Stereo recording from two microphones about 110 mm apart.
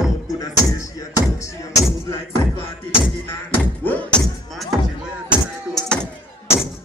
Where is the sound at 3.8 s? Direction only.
15° left (ahead or behind).